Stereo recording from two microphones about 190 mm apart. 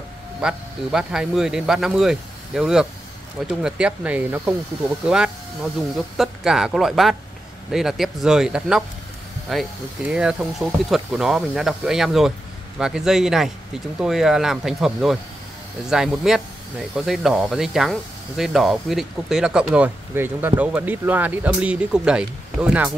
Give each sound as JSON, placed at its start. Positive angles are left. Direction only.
{"t": 0.4, "sound": "speech", "side_deg": -5}